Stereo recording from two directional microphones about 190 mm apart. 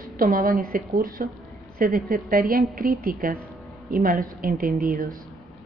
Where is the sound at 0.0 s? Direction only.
45° right (ahead or behind).